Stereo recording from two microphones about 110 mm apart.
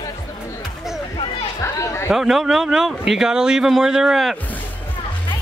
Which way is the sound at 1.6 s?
25° left (ahead or behind).